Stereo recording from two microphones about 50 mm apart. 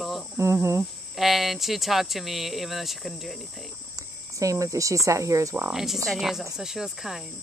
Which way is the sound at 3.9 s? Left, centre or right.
Right.